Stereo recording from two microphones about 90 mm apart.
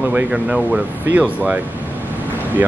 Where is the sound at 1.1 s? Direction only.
15° right (ahead or behind).